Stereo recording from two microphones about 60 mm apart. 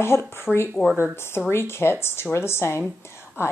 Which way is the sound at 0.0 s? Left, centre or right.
Left.